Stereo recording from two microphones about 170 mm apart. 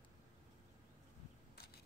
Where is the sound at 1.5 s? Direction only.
65° left (ahead or behind).